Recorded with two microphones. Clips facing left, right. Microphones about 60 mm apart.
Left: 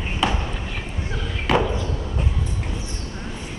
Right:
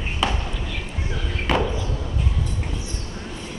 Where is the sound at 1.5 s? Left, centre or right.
Centre.